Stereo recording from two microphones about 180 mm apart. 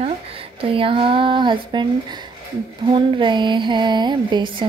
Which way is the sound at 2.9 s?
25° right (ahead or behind).